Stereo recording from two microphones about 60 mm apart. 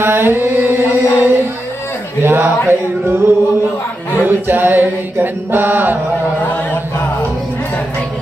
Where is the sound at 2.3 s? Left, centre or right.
Right.